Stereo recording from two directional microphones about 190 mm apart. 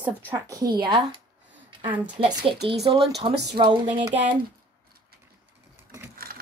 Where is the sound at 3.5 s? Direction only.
25° right (ahead or behind).